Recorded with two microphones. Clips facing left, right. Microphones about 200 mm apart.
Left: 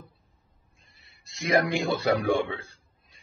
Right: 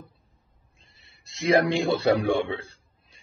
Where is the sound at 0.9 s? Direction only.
30° right (ahead or behind).